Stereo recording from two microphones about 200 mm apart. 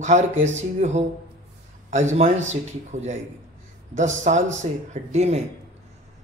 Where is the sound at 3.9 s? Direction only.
35° right (ahead or behind).